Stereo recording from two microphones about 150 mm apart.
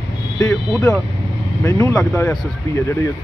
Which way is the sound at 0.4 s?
20° left (ahead or behind).